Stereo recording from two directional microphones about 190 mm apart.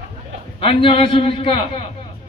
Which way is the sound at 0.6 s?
30° left (ahead or behind).